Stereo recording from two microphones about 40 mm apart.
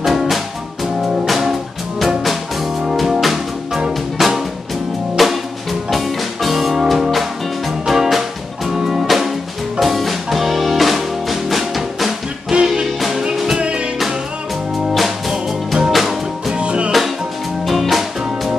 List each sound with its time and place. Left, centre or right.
0.0 s music: centre
9.0 s music: centre
13.6 s music: right
15.0 s music: centre
16.5 s music: right
17.6 s music: centre